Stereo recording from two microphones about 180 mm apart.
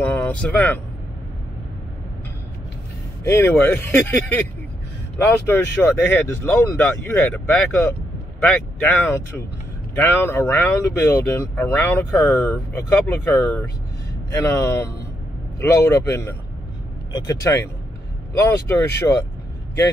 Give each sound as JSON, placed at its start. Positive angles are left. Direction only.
{"t": 0.0, "sound": "vehicle", "side_deg": 10}
{"t": 3.3, "sound": "speech", "side_deg": 15}
{"t": 6.0, "sound": "speech", "side_deg": 10}